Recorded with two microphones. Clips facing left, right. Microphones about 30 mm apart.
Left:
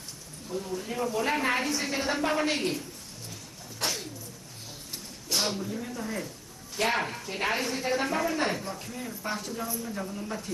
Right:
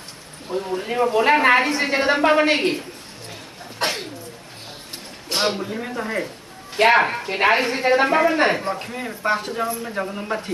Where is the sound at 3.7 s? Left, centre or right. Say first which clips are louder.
Right 8 dB; right.